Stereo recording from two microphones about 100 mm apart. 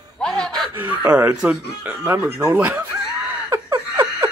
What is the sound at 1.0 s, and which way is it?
Speech, 10° right (ahead or behind).